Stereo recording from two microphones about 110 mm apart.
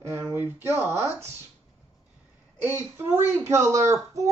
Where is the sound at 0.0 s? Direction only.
25° right (ahead or behind).